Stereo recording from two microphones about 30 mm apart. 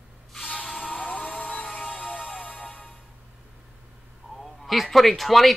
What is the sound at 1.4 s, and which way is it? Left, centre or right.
Music, left.